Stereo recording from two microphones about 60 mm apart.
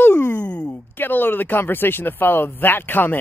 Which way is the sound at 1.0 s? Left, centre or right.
Left.